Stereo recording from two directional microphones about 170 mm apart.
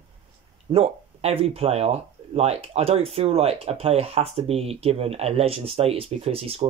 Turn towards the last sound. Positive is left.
turn(degrees=-35)  # may be behind; listen again after turning